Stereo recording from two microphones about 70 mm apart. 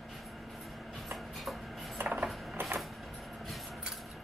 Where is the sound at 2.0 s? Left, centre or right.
Right.